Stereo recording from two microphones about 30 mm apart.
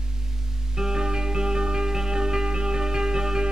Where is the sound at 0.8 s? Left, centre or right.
Right.